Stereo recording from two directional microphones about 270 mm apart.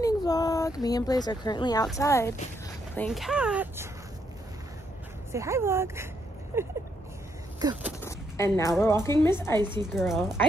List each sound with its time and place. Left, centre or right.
0.0 s a woman's voice: centre
5.3 s speech: centre
7.5 s vehicle: centre
8.0 s a sound: centre
8.8 s a woman's voice: centre
9.6 s speech: centre
9.9 s speech: centre